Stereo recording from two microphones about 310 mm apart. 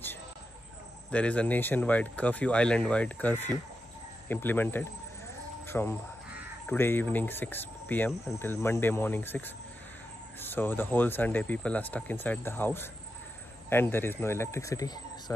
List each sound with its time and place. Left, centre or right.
1.1 s speech: centre
4.3 s cricket: centre
10.4 s cricket: centre